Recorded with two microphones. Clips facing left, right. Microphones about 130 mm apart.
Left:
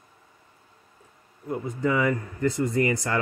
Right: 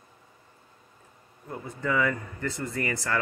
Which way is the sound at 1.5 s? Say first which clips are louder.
Left 4 dB; 15° left (ahead or behind).